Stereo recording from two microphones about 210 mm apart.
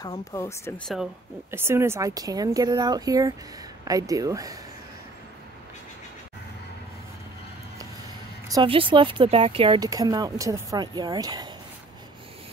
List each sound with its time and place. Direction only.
0.0 s speech: 15° left (ahead or behind)
1.5 s speech: 10° right (ahead or behind)
8.5 s speech: 20° right (ahead or behind)